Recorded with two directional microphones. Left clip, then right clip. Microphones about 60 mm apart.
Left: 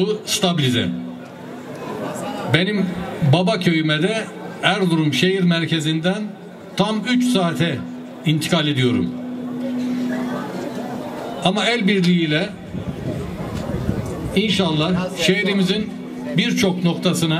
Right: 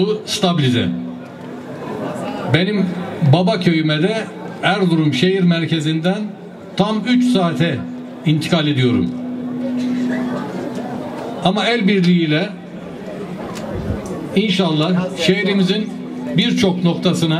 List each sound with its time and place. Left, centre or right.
0.0 s a man's voice: left
2.0 s a man's voice: left
10.1 s a sound: left
11.4 s a man's voice: left
13.7 s a man's voice: left